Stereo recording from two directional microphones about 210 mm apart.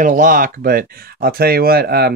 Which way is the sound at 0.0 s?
40° right (ahead or behind).